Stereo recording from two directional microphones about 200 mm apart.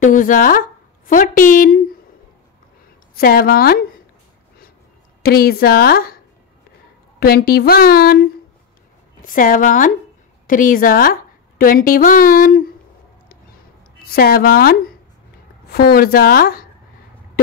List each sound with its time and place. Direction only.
0.0 s a woman's voice: 40° left (ahead or behind)
3.2 s a woman's voice: 50° left (ahead or behind)
5.2 s a woman's voice: 50° left (ahead or behind)
7.2 s a woman's voice: 50° left (ahead or behind)
9.2 s a woman's voice: 45° left (ahead or behind)
14.1 s a woman's voice: 50° left (ahead or behind)